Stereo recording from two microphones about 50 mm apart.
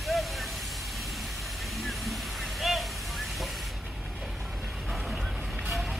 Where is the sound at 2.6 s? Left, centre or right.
Centre.